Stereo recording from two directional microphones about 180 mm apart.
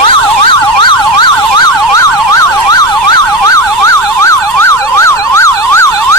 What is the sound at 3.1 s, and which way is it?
Emergency vehicle, 20° left (ahead or behind).